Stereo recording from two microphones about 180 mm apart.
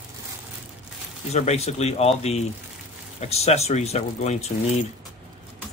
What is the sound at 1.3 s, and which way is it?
Speech, 35° left (ahead or behind).